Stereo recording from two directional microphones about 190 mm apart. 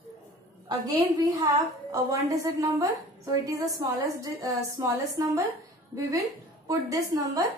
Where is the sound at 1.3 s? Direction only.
15° right (ahead or behind).